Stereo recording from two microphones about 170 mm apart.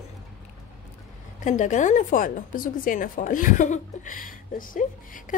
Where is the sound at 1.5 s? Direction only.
45° left (ahead or behind).